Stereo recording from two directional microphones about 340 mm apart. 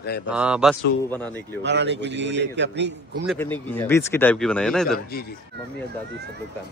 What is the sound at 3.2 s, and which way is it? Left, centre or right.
Speech, centre.